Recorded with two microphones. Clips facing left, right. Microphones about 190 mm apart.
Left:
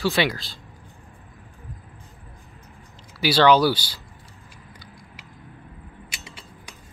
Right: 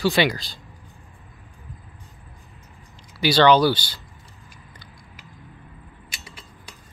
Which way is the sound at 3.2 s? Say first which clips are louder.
Right 1 dB; 5° left (ahead or behind).